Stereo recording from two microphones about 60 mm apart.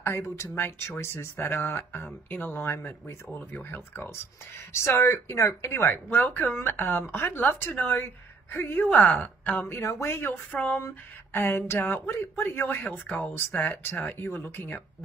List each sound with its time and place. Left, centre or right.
0.0 s a woman's voice: left
3.3 s a woman's voice: left
8.8 s a woman's voice: left
10.5 s speech: left
11.3 s a woman's voice: left